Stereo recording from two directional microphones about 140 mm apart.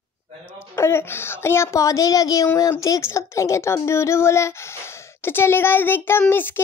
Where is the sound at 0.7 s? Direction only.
15° left (ahead or behind).